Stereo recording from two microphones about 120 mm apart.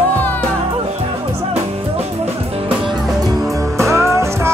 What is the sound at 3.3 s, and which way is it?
Music, 25° right (ahead or behind).